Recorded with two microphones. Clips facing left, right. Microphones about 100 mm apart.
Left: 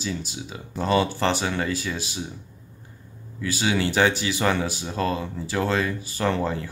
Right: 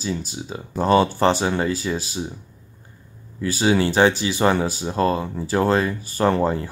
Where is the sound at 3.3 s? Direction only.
40° right (ahead or behind).